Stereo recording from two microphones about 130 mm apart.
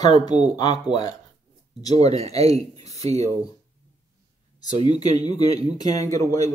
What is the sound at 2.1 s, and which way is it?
Speech, 25° left (ahead or behind).